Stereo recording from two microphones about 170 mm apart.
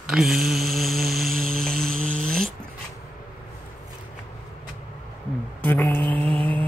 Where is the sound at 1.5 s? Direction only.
5° left (ahead or behind).